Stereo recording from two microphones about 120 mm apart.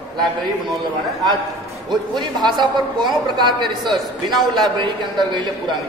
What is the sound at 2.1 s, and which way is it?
A woman's voice, 40° right (ahead or behind).